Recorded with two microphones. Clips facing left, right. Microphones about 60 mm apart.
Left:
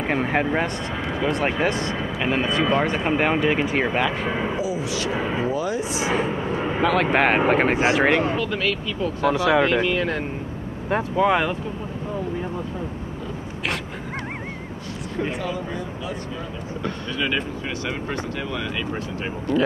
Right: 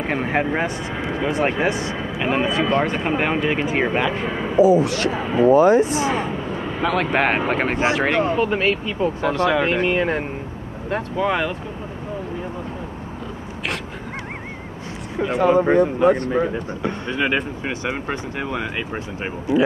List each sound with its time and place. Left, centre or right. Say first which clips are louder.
0.0 s speech: right 1 dB; centre
4.6 s speech: right 10 dB; right
5.1 s speech: right 7 dB; centre
5.5 s speech: right 11 dB; right
6.5 s vehicle: left 2 dB; centre
6.8 s speech: even; centre
8.4 s speech: right 5 dB; right
9.3 s speech: left 1 dB; centre
9.7 s speech: right 2 dB; right
10.9 s speech: left 2 dB; centre
15.3 s speech: right 13 dB; right
16.8 s speech: right 3 dB; right
19.5 s speech: right 3 dB; centre